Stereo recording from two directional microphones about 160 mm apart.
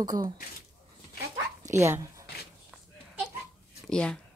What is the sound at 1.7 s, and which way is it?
Speech, 15° right (ahead or behind).